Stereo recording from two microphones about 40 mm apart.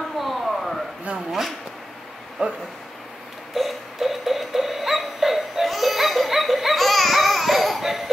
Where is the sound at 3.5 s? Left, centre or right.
Centre.